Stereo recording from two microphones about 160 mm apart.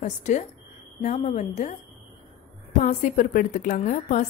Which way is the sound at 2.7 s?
50° left (ahead or behind).